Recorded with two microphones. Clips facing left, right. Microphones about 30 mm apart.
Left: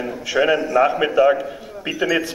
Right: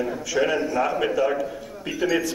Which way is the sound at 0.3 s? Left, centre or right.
Left.